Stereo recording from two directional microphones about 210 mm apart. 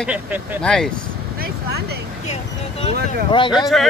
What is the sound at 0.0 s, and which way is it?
Speech, 5° right (ahead or behind).